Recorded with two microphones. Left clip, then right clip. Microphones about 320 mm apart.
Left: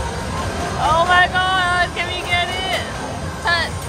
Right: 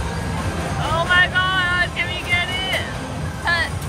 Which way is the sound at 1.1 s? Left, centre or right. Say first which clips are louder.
Left 2 dB; centre.